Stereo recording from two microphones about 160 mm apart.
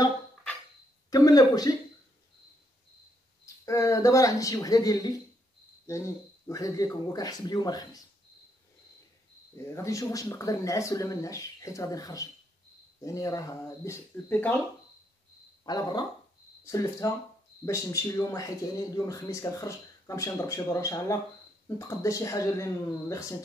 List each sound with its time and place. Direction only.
1.1 s speech: 25° left (ahead or behind)
3.6 s speech: 20° left (ahead or behind)
9.8 s speech: 20° left (ahead or behind)
15.6 s speech: 25° left (ahead or behind)